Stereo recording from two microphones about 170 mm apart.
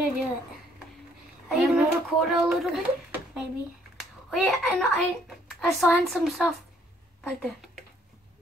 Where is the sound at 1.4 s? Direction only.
Centre (ahead or behind).